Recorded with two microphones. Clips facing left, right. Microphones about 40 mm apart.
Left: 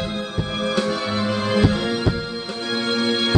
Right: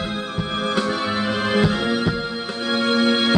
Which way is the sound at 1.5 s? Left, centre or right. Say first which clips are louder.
Even; centre.